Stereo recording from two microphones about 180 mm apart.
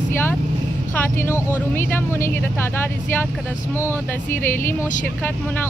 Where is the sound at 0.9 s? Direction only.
10° left (ahead or behind).